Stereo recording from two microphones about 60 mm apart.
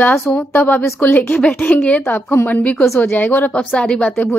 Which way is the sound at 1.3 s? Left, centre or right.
Left.